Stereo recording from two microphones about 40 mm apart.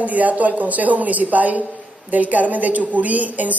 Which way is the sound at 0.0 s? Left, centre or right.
Right.